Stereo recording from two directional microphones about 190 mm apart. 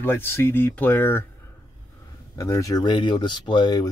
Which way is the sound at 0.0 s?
10° left (ahead or behind).